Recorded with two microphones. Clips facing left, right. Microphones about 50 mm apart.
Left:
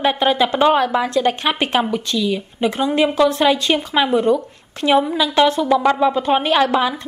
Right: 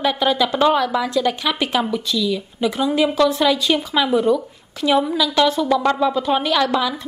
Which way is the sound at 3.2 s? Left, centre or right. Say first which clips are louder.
Left 1 dB; centre.